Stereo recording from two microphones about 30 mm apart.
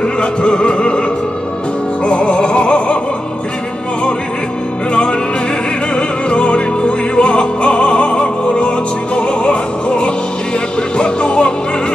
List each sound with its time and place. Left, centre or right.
0.0 s music: left
2.0 s music: left
5.9 s music: left